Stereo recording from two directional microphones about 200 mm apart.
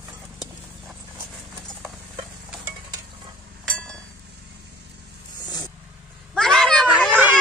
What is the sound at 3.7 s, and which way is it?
Chink, 5° left (ahead or behind).